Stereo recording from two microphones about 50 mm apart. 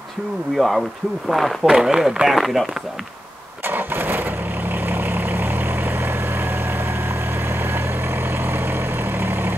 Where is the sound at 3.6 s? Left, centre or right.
Right.